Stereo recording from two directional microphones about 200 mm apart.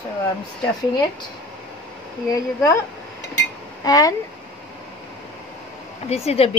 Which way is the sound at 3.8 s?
20° left (ahead or behind).